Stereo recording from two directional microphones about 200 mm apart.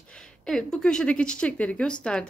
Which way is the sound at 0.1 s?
5° left (ahead or behind).